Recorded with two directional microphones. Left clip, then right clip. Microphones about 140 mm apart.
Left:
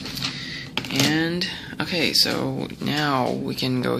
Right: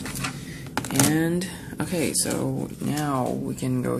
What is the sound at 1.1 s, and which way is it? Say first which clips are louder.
Speech: left 2 dB; 20° right (ahead or behind).